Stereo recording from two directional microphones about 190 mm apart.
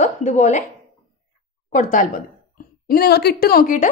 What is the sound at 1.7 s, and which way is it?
Speech, 45° left (ahead or behind).